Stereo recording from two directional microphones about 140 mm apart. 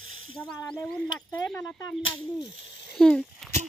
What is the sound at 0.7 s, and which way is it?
Speech, 5° left (ahead or behind).